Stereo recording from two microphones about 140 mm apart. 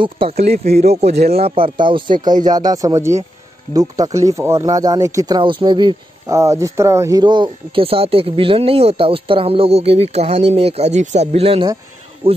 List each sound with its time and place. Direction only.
0.0 s speech: 40° right (ahead or behind)
1.4 s speech: 40° right (ahead or behind)